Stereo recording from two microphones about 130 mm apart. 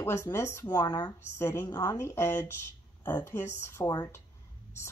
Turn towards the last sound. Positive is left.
turn(degrees=20)  # may be behind; listen again after turning